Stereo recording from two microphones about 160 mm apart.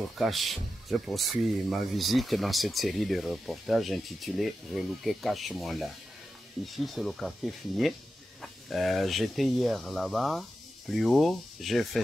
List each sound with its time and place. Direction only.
0.2 s speech: centre (ahead or behind)